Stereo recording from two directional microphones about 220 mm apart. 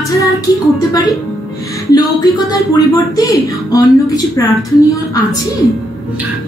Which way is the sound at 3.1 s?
15° left (ahead or behind).